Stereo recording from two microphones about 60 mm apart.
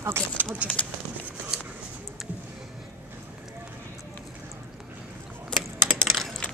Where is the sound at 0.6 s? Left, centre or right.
Left.